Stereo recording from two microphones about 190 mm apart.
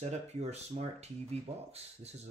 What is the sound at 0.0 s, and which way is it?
Speech, 35° right (ahead or behind).